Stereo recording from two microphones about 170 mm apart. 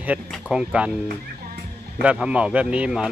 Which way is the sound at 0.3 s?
5° right (ahead or behind).